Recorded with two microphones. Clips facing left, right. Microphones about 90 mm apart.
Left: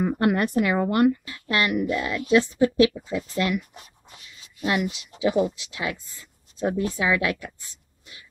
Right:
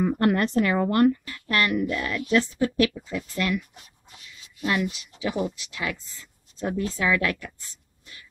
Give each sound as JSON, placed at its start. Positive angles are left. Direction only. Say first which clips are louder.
{"t": 0.0, "sound": "a woman's voice", "louder": "even", "side_deg": 15}